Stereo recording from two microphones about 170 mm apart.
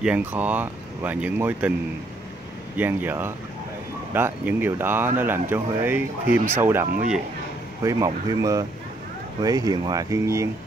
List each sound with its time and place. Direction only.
0.0 s speech: 10° right (ahead or behind)
2.8 s speech: 10° right (ahead or behind)